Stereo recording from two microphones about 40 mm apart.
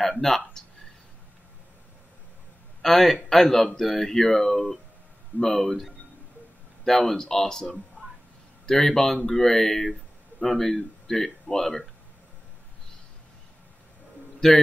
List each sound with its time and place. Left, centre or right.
0.0 s speech: centre
2.8 s speech: centre
14.4 s speech: centre